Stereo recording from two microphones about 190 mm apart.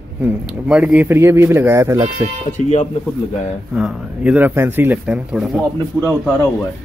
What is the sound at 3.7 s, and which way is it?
Speech, centre (ahead or behind).